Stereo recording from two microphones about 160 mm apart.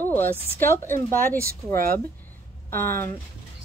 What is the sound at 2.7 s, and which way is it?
Speech, 15° left (ahead or behind).